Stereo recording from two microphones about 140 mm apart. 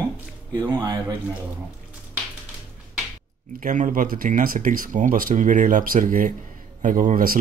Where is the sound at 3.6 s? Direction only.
65° right (ahead or behind).